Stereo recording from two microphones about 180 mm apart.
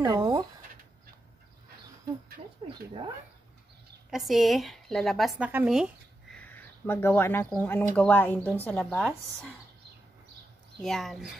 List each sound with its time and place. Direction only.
0.0 s speech: 20° right (ahead or behind)
2.4 s speech: 30° right (ahead or behind)
4.1 s a woman's voice: centre (ahead or behind)
6.3 s a woman's voice: 10° left (ahead or behind)
10.8 s a woman's voice: centre (ahead or behind)